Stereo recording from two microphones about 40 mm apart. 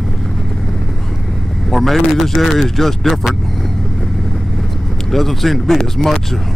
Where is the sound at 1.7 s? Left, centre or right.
Centre.